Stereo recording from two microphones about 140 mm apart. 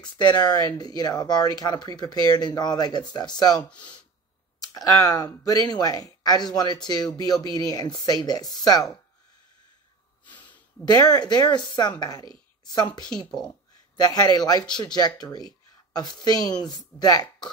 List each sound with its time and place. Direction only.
0.0 s speech: 30° left (ahead or behind)
10.2 s a sound: 35° left (ahead or behind)
10.9 s speech: 30° left (ahead or behind)